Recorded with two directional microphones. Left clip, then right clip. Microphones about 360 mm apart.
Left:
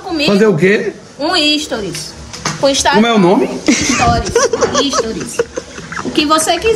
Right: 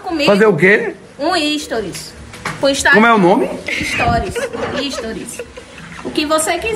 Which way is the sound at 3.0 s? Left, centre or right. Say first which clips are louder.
Right 1 dB; centre.